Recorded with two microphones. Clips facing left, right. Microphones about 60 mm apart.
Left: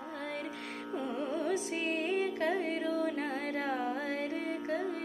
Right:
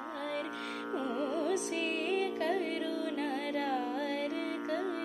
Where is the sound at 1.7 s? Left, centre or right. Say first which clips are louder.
Even; left.